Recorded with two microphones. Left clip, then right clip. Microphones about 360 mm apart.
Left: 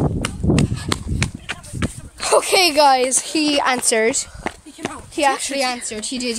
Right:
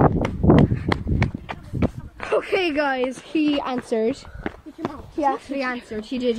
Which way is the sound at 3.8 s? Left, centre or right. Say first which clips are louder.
Left 5 dB; left.